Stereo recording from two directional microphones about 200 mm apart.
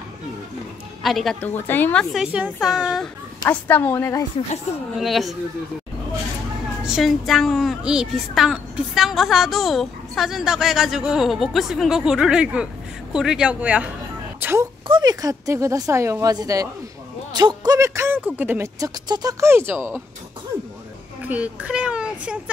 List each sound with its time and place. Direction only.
1.0 s a woman's voice: centre (ahead or behind)
3.4 s a woman's voice: 10° left (ahead or behind)
4.9 s a woman's voice: centre (ahead or behind)
6.8 s a woman's voice: centre (ahead or behind)
21.2 s a child's voice: 5° right (ahead or behind)